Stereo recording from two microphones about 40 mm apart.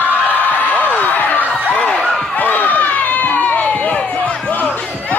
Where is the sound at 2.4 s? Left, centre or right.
Left.